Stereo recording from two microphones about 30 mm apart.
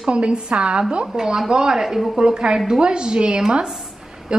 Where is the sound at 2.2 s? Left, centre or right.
Right.